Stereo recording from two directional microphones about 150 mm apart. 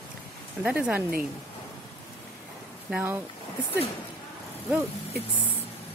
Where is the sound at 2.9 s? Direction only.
5° right (ahead or behind).